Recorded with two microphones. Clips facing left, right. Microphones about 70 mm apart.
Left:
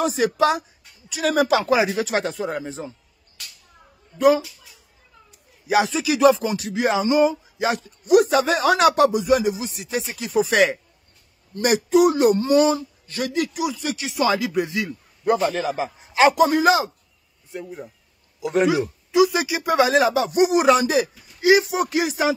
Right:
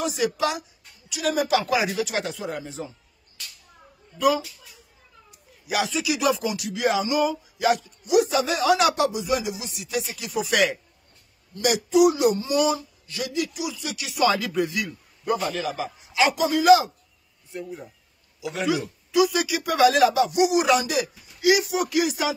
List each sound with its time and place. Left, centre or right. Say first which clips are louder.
0.0 s speech: left 5 dB; left
1.5 s speech: left 4 dB; left
5.3 s a sound: left 8 dB; left
5.9 s speech: left 7 dB; left
8.0 s speech: left 7 dB; left
12.5 s speech: left 5 dB; left
13.0 s speech: left 4 dB; left
18.4 s a man's voice: left 9 dB; left
18.7 s speech: left 4 dB; left